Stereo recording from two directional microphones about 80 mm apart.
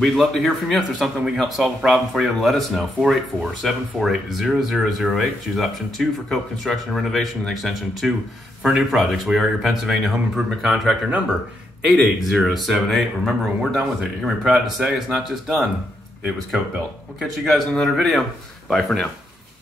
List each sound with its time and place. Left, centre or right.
0.0 s speech: centre
11.1 s speech: centre
11.8 s speech: centre
17.5 s speech: centre